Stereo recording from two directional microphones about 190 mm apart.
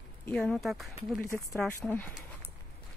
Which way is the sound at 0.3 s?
5° left (ahead or behind).